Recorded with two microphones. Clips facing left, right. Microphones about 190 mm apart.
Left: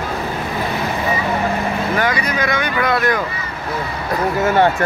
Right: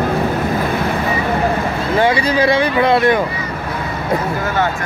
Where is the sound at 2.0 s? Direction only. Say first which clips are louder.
Right 5 dB; 30° right (ahead or behind).